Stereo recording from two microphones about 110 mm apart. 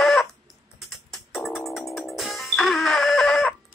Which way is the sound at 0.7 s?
Centre (ahead or behind).